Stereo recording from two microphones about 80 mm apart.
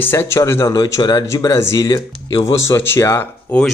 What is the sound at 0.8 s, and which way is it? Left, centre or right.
Speech, left.